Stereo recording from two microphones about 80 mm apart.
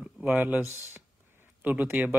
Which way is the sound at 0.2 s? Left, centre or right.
Centre.